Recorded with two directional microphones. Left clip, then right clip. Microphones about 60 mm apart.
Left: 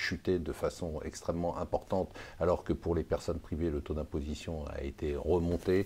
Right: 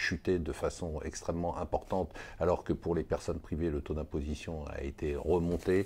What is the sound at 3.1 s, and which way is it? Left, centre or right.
Speech, right.